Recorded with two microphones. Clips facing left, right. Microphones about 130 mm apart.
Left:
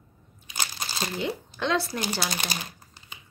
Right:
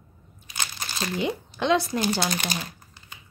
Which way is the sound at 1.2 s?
20° right (ahead or behind).